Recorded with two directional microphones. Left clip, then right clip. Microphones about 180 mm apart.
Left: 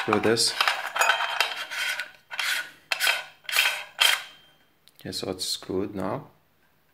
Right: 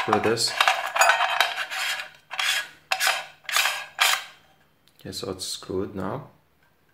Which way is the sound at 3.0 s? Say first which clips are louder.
Left 1 dB; 10° left (ahead or behind).